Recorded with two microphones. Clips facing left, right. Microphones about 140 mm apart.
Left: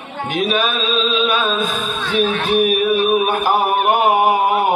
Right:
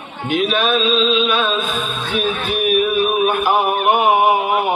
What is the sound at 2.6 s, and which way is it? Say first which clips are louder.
Mantra: right 3 dB; 40° left (ahead or behind).